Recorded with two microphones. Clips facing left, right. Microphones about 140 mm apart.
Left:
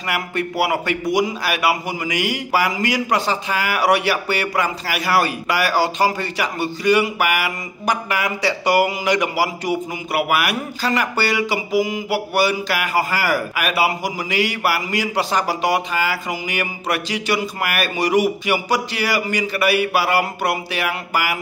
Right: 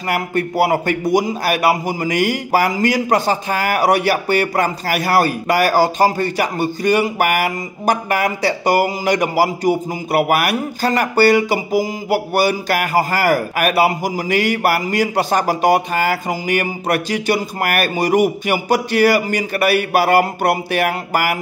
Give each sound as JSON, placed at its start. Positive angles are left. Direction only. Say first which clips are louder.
{"t": 0.1, "sound": "a man's voice", "louder": "right 4 dB", "side_deg": -45}